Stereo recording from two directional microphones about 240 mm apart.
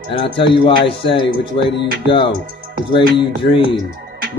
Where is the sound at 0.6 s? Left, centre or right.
Left.